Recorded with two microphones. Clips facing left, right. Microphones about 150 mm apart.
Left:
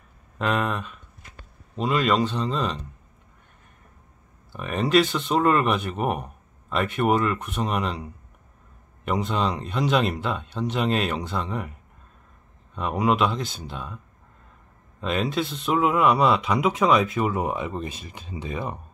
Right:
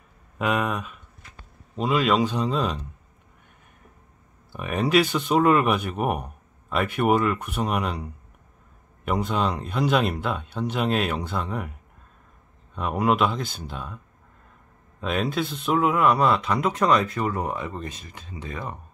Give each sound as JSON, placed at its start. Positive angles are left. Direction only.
{"t": 0.4, "sound": "speech", "side_deg": -5}
{"t": 4.5, "sound": "speech", "side_deg": -5}
{"t": 12.7, "sound": "speech", "side_deg": 0}
{"t": 15.0, "sound": "speech", "side_deg": 0}
{"t": 16.2, "sound": "speech", "side_deg": 15}
{"t": 17.2, "sound": "speech", "side_deg": 15}